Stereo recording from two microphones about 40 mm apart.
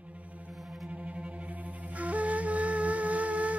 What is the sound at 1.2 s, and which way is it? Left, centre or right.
Flute, right.